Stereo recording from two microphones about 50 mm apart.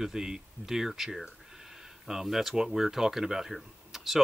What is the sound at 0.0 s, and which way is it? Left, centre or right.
Speech, centre.